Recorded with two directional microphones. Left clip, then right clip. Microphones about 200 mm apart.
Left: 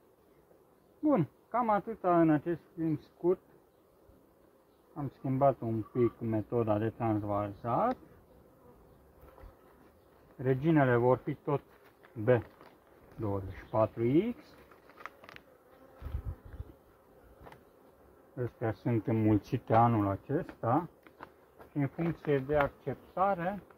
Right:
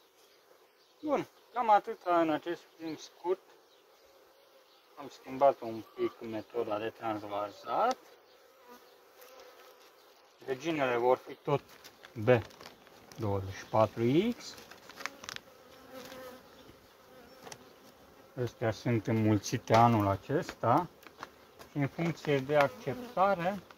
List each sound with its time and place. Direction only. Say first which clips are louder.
1.0 s speech: left 3 dB; 5° right (ahead or behind)
4.9 s speech: left 3 dB; 10° right (ahead or behind)
10.5 s speech: left 4 dB; centre (ahead or behind)
13.2 s speech: right 1 dB; 10° right (ahead or behind)
15.0 s insect: right 7 dB; 20° right (ahead or behind)
17.5 s insect: right 4 dB; centre (ahead or behind)
18.3 s speech: right 2 dB; centre (ahead or behind)